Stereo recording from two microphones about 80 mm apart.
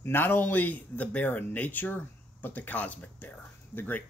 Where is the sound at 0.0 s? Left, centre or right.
Left.